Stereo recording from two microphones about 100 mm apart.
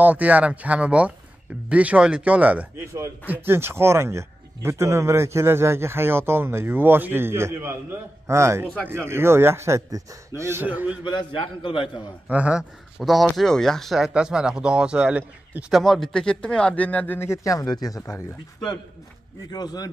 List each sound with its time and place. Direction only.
0.0 s speech: 15° right (ahead or behind)
3.3 s speech: 25° right (ahead or behind)
11.1 s a man's voice: 55° left (ahead or behind)
12.3 s speech: 15° right (ahead or behind)
13.0 s speech: centre (ahead or behind)
15.7 s speech: centre (ahead or behind); by 18.2 s 35° left (ahead or behind)
19.5 s a man's voice: 40° left (ahead or behind)